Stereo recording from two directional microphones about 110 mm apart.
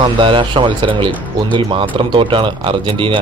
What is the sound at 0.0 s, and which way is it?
Speech, 50° right (ahead or behind).